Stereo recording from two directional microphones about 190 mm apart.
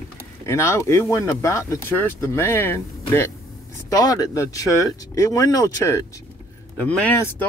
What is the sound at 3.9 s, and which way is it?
Speech, 20° left (ahead or behind).